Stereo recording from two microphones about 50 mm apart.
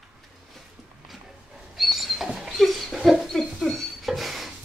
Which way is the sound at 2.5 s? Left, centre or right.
Centre.